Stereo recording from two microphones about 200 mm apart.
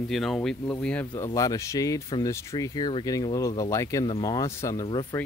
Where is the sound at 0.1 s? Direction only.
Centre (ahead or behind).